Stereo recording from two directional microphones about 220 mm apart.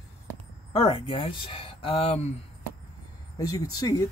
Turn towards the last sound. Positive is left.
turn(degrees=15)  # may be behind; listen again after turning